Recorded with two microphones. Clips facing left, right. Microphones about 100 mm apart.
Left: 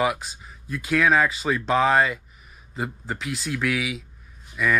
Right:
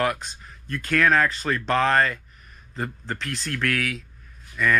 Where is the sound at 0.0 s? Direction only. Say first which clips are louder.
Left 1 dB; 5° left (ahead or behind).